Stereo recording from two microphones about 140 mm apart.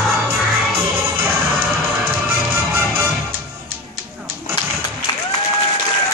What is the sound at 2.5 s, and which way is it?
Music, 15° right (ahead or behind).